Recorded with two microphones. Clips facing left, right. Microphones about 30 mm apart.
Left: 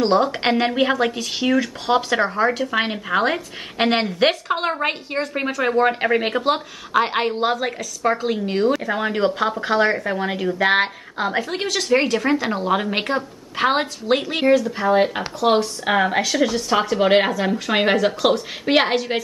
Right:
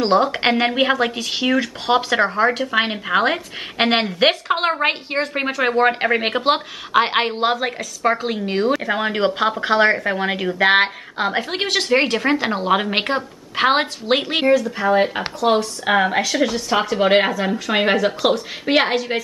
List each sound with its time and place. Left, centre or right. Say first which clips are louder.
0.0 s speech: right 1 dB; centre
6.2 s a woman's voice: right 2 dB; right
14.6 s a woman's voice: even; centre